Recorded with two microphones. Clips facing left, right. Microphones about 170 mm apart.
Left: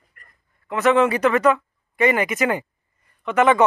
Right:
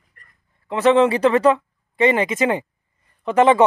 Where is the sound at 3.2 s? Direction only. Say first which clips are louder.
Right 3 dB; 30° right (ahead or behind).